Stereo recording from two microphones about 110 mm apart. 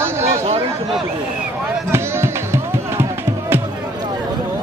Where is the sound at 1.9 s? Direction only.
25° right (ahead or behind).